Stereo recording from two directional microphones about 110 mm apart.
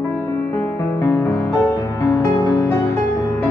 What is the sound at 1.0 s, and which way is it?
Music, 35° left (ahead or behind).